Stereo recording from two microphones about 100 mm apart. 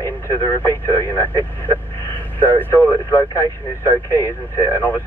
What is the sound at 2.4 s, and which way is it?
Speech, 20° left (ahead or behind).